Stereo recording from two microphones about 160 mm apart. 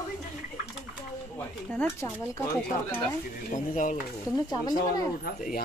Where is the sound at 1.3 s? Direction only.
15° left (ahead or behind).